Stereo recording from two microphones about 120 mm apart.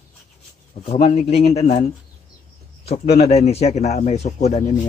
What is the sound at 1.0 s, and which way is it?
Speech, 60° left (ahead or behind).